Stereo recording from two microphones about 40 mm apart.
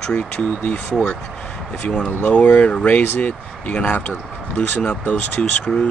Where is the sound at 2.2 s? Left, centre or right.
Left.